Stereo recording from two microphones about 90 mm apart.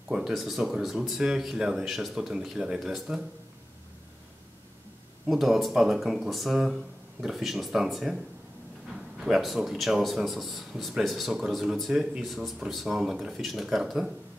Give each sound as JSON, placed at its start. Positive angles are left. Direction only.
{"t": 0.1, "sound": "a man's voice", "side_deg": -5}
{"t": 5.3, "sound": "a man's voice", "side_deg": 0}